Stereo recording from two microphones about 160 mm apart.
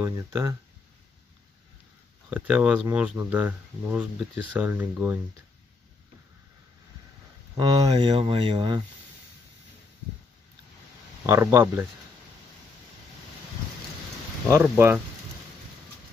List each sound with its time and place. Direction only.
0.0 s speech: 20° right (ahead or behind)
2.2 s speech: 10° right (ahead or behind)
7.5 s speech: 25° right (ahead or behind)
11.2 s speech: 15° right (ahead or behind)
14.5 s speech: 15° right (ahead or behind)